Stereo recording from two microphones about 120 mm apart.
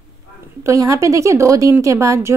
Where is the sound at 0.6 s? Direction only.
25° right (ahead or behind).